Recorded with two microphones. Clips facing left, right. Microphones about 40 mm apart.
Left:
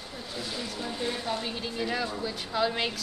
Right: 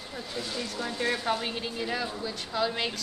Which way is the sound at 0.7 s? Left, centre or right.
Right.